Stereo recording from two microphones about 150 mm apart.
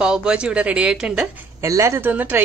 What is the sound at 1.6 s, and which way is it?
Speech, 20° right (ahead or behind).